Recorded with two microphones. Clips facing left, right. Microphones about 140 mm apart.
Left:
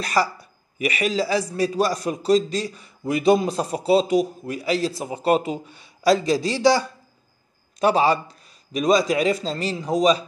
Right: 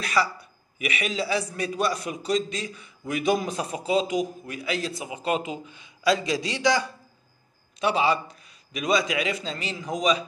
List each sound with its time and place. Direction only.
0.0 s a man's voice: 40° left (ahead or behind)